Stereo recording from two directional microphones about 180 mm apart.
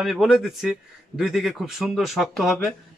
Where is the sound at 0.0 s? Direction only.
Centre (ahead or behind).